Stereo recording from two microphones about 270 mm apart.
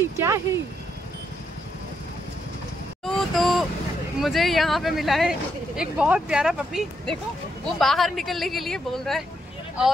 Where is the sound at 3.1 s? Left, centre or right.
Centre.